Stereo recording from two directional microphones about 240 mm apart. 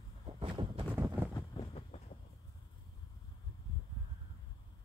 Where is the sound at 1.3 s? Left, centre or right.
Left.